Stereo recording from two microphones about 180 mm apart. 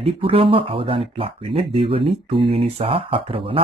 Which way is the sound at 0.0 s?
30° right (ahead or behind).